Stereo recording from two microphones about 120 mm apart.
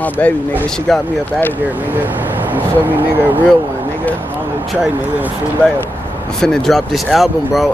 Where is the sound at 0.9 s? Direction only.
Centre (ahead or behind).